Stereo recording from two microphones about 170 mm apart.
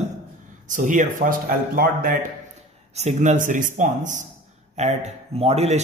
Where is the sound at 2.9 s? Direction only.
45° right (ahead or behind).